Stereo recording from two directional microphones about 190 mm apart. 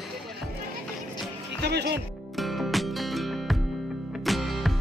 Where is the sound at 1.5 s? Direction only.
65° right (ahead or behind).